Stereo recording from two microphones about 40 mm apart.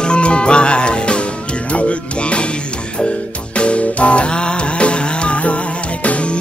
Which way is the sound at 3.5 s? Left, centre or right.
Left.